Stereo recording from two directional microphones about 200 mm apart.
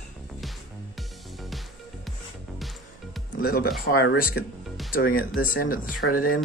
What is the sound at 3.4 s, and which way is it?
Speech, 50° left (ahead or behind).